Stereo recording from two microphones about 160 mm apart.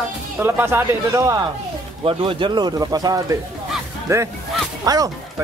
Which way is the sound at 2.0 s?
35° right (ahead or behind).